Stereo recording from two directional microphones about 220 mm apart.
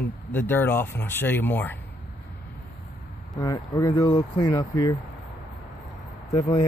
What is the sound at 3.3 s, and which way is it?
Speech, 20° left (ahead or behind).